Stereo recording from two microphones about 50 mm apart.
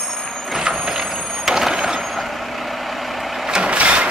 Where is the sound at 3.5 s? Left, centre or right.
Right.